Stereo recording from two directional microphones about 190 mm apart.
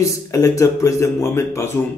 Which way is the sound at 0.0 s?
15° left (ahead or behind).